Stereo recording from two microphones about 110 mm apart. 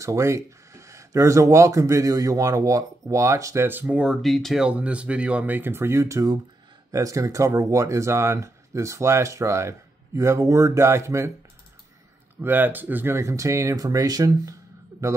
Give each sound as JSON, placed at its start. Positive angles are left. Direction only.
{"t": 0.0, "sound": "speech", "side_deg": -30}
{"t": 4.6, "sound": "speech", "side_deg": -10}
{"t": 12.4, "sound": "speech", "side_deg": -15}